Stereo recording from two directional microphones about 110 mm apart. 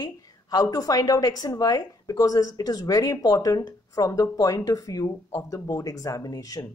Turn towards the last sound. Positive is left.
turn(degrees=35)  # may be behind; listen again after turning